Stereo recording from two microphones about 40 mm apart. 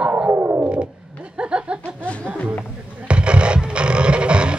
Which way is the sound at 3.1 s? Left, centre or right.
Right.